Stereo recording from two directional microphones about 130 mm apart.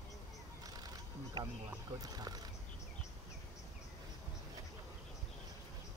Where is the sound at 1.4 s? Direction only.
30° right (ahead or behind).